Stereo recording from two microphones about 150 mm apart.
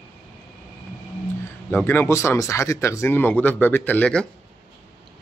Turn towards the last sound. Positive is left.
turn(degrees=5)  # may be behind; listen again after turning